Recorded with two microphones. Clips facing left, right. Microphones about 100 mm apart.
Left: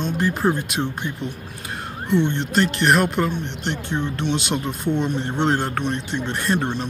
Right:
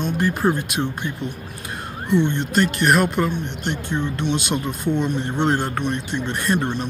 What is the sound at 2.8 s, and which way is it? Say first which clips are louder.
Speech: even; 5° right (ahead or behind).